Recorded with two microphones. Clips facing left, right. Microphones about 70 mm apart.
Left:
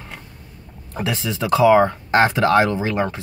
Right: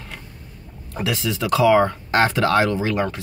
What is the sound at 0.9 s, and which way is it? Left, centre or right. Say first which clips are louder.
Speech: even; left.